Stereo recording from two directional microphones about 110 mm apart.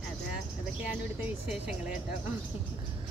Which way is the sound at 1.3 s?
10° right (ahead or behind).